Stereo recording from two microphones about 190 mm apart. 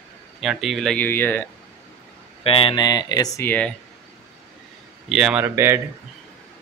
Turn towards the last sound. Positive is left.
turn(degrees=-10)  # may be behind; listen again after turning